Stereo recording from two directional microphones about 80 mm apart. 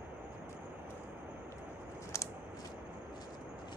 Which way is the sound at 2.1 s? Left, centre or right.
Left.